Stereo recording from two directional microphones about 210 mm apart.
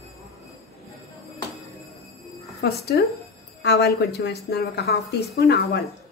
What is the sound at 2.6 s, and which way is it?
Speech, 50° left (ahead or behind).